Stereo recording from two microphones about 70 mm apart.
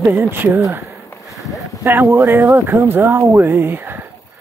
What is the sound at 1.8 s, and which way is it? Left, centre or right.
Speech, right.